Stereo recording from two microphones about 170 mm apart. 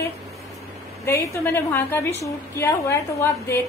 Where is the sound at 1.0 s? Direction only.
15° left (ahead or behind).